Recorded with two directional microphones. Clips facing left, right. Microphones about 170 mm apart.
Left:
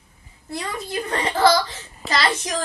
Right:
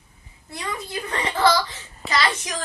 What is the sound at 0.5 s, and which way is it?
A child's voice, 35° left (ahead or behind).